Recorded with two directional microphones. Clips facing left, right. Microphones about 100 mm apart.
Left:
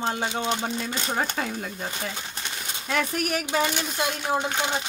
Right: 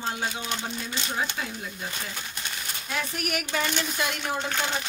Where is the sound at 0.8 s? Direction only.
40° left (ahead or behind).